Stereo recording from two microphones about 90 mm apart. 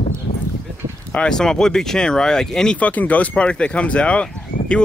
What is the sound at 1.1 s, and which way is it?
Speech, 10° left (ahead or behind).